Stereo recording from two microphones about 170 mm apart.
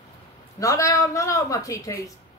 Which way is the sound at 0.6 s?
20° left (ahead or behind).